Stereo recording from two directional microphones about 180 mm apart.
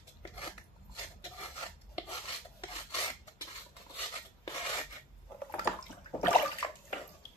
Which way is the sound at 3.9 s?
25° left (ahead or behind).